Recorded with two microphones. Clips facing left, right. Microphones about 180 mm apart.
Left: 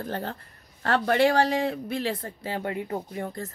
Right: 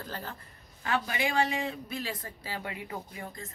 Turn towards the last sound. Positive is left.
turn(degrees=45)  # may be behind; listen again after turning